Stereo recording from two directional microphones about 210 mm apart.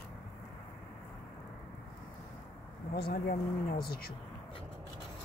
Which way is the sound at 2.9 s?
45° left (ahead or behind).